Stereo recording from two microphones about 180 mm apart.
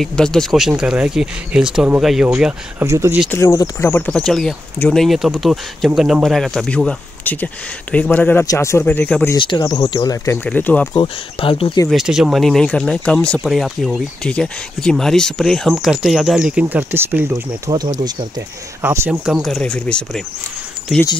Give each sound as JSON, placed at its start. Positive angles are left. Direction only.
{"t": 0.0, "sound": "speech", "side_deg": 5}
{"t": 2.8, "sound": "speech", "side_deg": -15}
{"t": 3.3, "sound": "speech", "side_deg": 15}
{"t": 9.4, "sound": "speech", "side_deg": 25}
{"t": 11.0, "sound": "speech", "side_deg": 30}
{"t": 11.9, "sound": "speech", "side_deg": 0}